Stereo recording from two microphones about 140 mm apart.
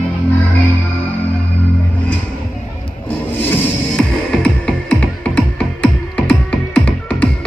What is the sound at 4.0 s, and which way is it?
Music, 5° left (ahead or behind).